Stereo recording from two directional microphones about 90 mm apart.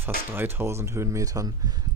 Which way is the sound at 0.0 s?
25° right (ahead or behind).